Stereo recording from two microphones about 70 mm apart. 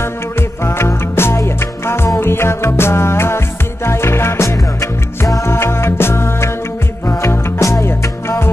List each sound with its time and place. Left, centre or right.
0.0 s music: left